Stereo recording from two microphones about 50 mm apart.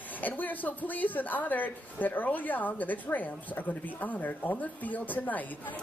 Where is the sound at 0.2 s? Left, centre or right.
Left.